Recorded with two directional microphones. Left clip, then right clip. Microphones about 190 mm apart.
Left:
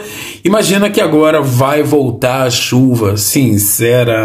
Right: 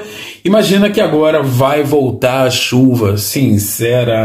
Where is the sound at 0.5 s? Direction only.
25° left (ahead or behind).